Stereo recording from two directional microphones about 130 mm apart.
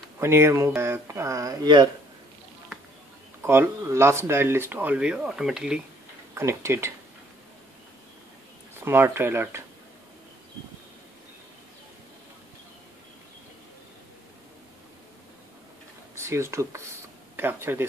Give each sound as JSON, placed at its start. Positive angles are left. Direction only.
{"t": 0.2, "sound": "speech", "side_deg": -20}
{"t": 3.4, "sound": "speech", "side_deg": -20}
{"t": 6.3, "sound": "speech", "side_deg": -20}
{"t": 8.7, "sound": "speech", "side_deg": -15}
{"t": 16.2, "sound": "speech", "side_deg": -20}